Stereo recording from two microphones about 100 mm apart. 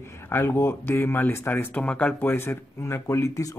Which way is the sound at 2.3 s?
25° left (ahead or behind).